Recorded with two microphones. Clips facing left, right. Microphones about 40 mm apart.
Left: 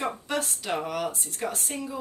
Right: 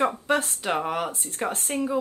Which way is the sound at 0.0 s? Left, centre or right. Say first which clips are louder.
Right 6 dB; right.